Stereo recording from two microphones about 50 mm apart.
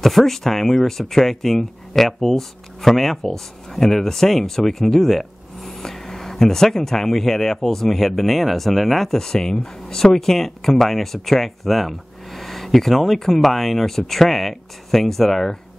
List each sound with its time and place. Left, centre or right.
0.0 s speech: centre